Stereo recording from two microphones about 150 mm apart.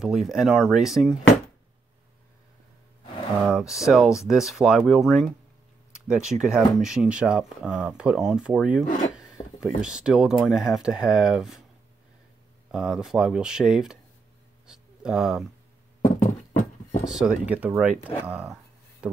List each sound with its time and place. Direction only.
0.0 s speech: centre (ahead or behind)
3.4 s speech: centre (ahead or behind)
9.6 s speech: 5° right (ahead or behind)
12.7 s speech: 5° right (ahead or behind)
16.0 s horse: 55° left (ahead or behind)
17.0 s speech: 5° right (ahead or behind)